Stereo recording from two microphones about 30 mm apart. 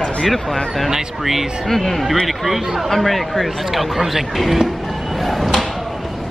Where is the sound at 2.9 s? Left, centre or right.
Centre.